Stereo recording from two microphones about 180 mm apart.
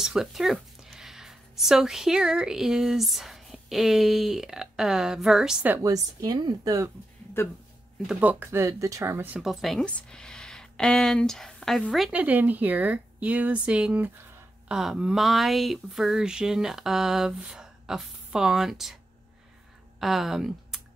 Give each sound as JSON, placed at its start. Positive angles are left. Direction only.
{"t": 0.0, "sound": "speech", "side_deg": 0}
{"t": 5.8, "sound": "speech", "side_deg": -20}
{"t": 7.4, "sound": "speech", "side_deg": 15}
{"t": 8.1, "sound": "speech", "side_deg": -10}
{"t": 20.0, "sound": "speech", "side_deg": 0}